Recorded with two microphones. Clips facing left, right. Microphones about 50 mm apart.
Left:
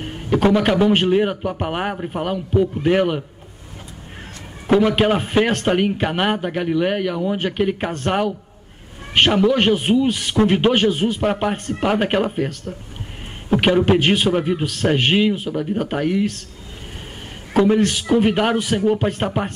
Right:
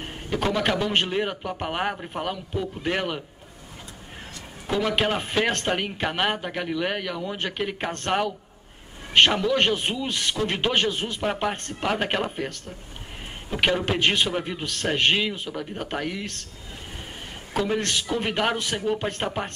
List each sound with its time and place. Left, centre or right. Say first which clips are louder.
0.3 s a man's voice: left 8 dB; centre
2.3 s a man's voice: left 11 dB; centre
4.7 s a man's voice: left 8 dB; centre
17.6 s a man's voice: left 9 dB; centre
18.8 s speech: left 8 dB; centre
19.0 s a man's voice: left 6 dB; centre